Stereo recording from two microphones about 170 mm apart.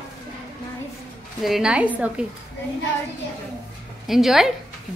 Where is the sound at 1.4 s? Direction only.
5° right (ahead or behind).